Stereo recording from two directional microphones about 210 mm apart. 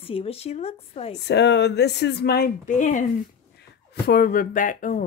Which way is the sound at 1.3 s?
55° left (ahead or behind).